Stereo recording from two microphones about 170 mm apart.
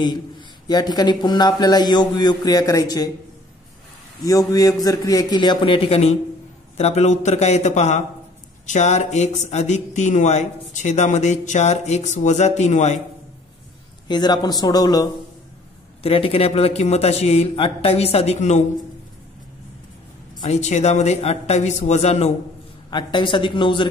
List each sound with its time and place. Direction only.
0.7 s speech: 25° left (ahead or behind)
4.2 s a man's voice: 20° left (ahead or behind); by 13.0 s 45° left (ahead or behind)
14.0 s speech: 25° left (ahead or behind)
16.0 s a man's voice: 35° left (ahead or behind)
20.4 s a man's voice: 40° left (ahead or behind)
22.8 s speech: 25° left (ahead or behind)